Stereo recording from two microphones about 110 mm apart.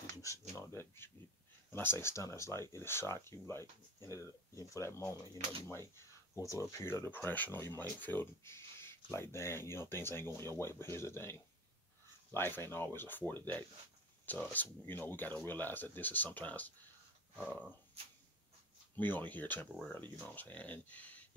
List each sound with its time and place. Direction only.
0.2 s a sound: 30° left (ahead or behind)
1.7 s speech: 20° left (ahead or behind)
18.9 s speech: 15° left (ahead or behind)